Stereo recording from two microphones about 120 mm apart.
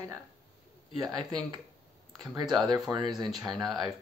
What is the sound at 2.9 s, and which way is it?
Speech, 35° right (ahead or behind).